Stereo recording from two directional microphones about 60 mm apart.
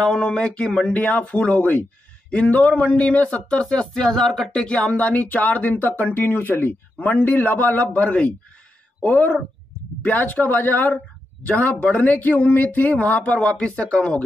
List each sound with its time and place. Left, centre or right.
0.0 s speech: centre